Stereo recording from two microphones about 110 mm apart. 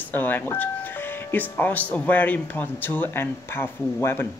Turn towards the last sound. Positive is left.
turn(degrees=20)  # may be behind; listen again after turning